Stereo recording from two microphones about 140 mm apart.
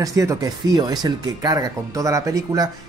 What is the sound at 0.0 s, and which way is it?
Speech, 25° right (ahead or behind).